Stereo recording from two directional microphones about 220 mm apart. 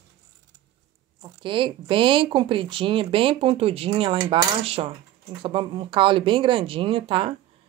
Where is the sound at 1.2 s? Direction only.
20° right (ahead or behind).